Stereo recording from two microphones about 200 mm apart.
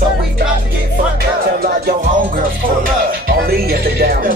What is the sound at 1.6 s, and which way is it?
Music, 50° right (ahead or behind).